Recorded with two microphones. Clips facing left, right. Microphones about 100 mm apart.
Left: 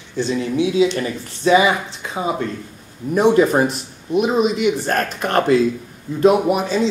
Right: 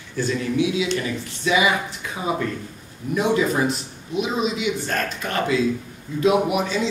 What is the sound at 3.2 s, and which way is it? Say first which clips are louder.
A man's voice: left 6 dB; 50° left (ahead or behind).